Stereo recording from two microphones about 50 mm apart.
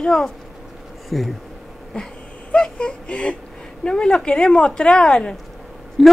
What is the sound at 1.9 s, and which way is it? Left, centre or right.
A woman's voice, left.